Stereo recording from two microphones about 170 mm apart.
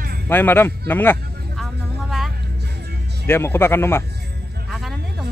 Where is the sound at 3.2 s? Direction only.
15° left (ahead or behind).